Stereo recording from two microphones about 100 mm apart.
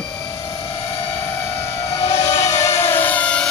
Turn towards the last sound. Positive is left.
turn(degrees=10)  # may be behind; listen again after turning